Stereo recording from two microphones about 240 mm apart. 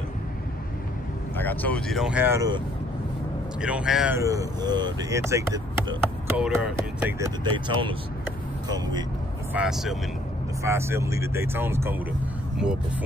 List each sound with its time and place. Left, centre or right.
1.3 s speech: centre
3.6 s speech: centre
9.5 s speech: centre